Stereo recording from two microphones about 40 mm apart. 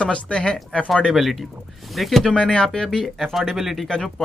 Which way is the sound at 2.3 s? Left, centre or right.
Left.